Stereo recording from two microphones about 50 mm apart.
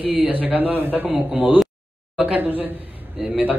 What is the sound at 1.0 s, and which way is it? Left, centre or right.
Speech, centre.